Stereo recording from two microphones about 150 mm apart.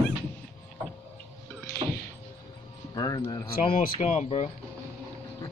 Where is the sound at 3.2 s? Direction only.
20° left (ahead or behind).